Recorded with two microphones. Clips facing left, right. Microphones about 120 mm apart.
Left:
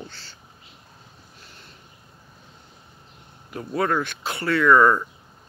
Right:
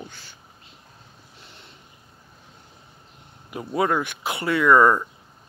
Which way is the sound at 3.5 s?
15° right (ahead or behind).